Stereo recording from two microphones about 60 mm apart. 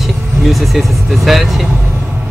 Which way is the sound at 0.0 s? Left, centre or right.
Centre.